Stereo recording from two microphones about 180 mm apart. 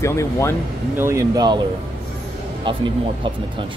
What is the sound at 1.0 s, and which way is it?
Speech, 15° right (ahead or behind).